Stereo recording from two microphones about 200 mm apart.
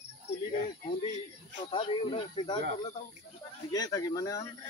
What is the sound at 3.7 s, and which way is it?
Speech, 20° left (ahead or behind).